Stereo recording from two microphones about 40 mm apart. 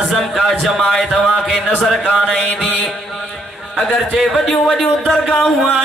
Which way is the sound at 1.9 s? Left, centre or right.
Centre.